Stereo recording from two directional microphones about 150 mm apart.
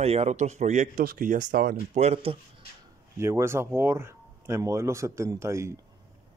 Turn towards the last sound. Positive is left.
turn(degrees=-20)  # may be behind; listen again after turning